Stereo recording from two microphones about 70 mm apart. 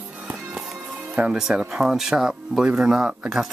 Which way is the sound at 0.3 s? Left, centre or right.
Centre.